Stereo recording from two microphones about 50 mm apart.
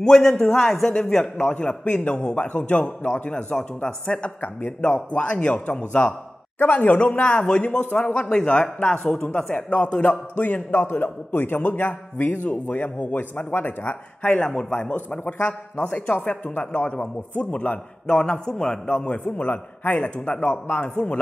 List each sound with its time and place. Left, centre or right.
0.0 s a man's voice: centre
1.2 s a man's voice: left
9.5 s a man's voice: left
13.5 s a man's voice: left
14.3 s a man's voice: left
18.0 s a man's voice: centre